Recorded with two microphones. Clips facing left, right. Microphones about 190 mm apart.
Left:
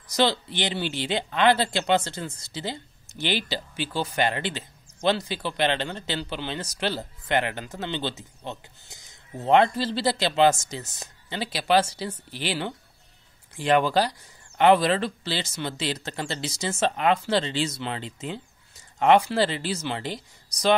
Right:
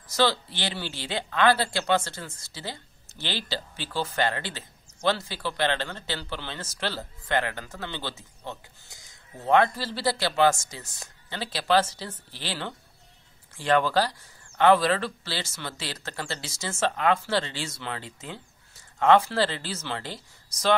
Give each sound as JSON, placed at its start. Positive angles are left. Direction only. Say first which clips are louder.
{"t": 0.1, "sound": "speech", "louder": "left 1 dB", "side_deg": 20}